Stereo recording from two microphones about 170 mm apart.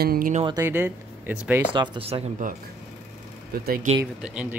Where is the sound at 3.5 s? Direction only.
60° right (ahead or behind).